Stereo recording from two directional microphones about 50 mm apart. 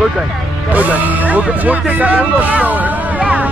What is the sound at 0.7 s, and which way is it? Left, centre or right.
Speech, right.